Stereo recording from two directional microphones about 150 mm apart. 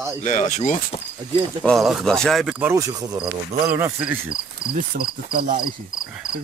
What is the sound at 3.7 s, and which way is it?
Speech, 15° right (ahead or behind).